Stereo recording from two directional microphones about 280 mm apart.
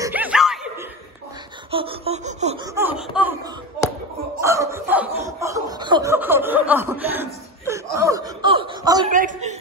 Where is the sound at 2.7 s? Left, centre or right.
Centre.